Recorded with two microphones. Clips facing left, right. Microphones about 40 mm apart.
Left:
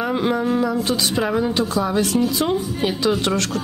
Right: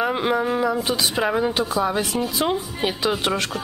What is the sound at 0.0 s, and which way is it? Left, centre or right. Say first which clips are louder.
Speech: left 1 dB; centre.